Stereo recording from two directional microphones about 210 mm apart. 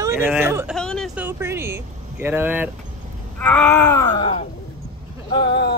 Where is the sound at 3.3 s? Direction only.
10° left (ahead or behind); by 4.5 s 25° left (ahead or behind).